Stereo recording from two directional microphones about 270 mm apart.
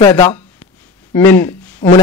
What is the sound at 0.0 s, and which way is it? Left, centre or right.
Speech, centre.